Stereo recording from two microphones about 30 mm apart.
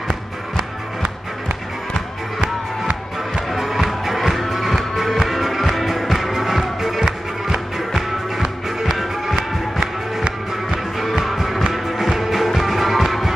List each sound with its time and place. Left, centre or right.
3.5 s music: centre
11.0 s music: centre